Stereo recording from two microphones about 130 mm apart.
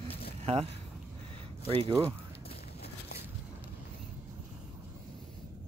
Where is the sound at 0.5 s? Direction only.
45° right (ahead or behind).